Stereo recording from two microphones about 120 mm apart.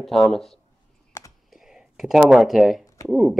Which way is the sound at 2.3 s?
5° right (ahead or behind).